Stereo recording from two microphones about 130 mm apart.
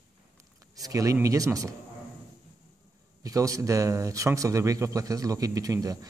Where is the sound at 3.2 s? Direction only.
25° right (ahead or behind).